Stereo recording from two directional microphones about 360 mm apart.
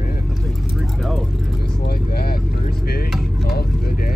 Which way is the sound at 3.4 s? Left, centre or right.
Left.